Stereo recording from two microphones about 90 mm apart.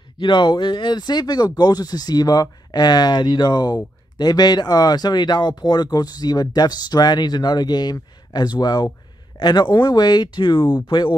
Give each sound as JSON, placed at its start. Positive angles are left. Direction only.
{"t": 0.2, "sound": "speech", "side_deg": 55}